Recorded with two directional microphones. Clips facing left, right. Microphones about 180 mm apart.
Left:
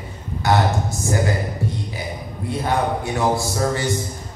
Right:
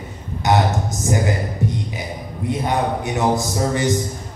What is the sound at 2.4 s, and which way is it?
A man's voice, 20° right (ahead or behind).